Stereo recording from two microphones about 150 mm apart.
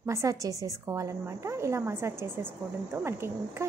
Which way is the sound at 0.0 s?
20° right (ahead or behind).